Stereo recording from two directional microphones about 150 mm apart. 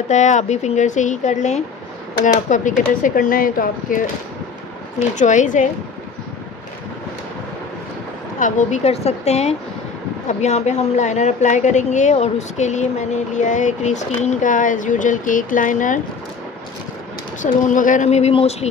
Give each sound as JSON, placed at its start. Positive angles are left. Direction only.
{"t": 0.1, "sound": "a woman's voice", "side_deg": 55}
{"t": 5.1, "sound": "speech", "side_deg": 55}
{"t": 8.4, "sound": "a woman's voice", "side_deg": 60}
{"t": 17.4, "sound": "a woman's voice", "side_deg": 60}